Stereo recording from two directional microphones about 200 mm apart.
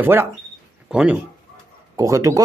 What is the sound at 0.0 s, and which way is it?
Speech, 10° right (ahead or behind).